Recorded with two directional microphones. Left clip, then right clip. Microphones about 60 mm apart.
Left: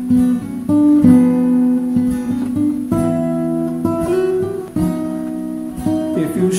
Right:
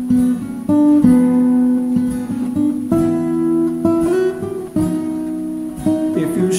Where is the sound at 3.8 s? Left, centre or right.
Right.